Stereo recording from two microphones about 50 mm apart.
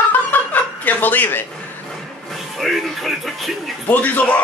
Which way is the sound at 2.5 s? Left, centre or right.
Centre.